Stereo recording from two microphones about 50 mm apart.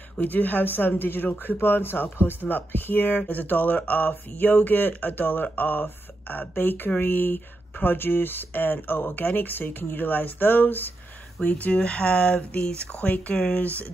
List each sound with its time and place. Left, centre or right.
0.2 s speech: left
11.3 s speech: left